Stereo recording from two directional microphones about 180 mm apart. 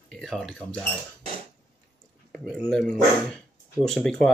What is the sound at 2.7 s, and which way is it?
Speech, 5° left (ahead or behind).